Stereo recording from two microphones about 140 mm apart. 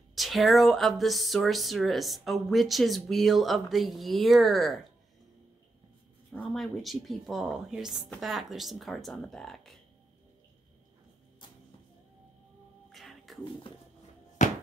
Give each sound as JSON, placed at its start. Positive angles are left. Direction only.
{"t": 0.1, "sound": "speech", "side_deg": 0}
{"t": 6.3, "sound": "speech", "side_deg": 0}
{"t": 12.9, "sound": "whispering", "side_deg": 0}
{"t": 14.4, "sound": "chopping", "side_deg": 60}